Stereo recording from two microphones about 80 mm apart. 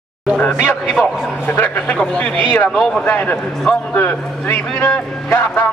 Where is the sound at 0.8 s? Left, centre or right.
Centre.